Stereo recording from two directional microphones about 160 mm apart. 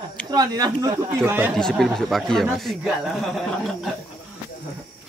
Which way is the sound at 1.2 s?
10° right (ahead or behind).